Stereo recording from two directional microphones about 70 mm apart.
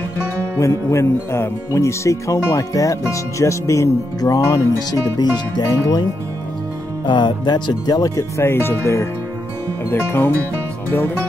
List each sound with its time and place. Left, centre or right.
0.6 s speech: left
5.2 s speech: left
7.1 s speech: left
8.2 s speech: left
10.9 s music: left